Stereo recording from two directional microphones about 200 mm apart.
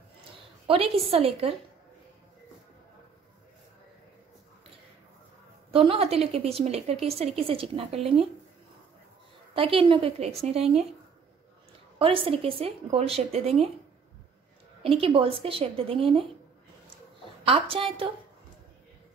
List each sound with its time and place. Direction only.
0.7 s a woman's voice: 30° right (ahead or behind)
5.7 s a woman's voice: 30° right (ahead or behind)
9.6 s a woman's voice: 25° right (ahead or behind)
12.0 s a woman's voice: 25° right (ahead or behind)
14.8 s a woman's voice: 30° right (ahead or behind)
17.5 s a woman's voice: 25° right (ahead or behind)